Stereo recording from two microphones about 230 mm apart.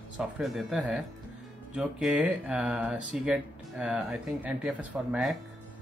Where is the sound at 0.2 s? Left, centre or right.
Centre.